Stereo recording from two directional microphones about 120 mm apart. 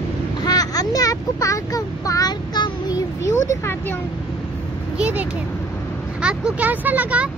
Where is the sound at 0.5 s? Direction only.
30° left (ahead or behind).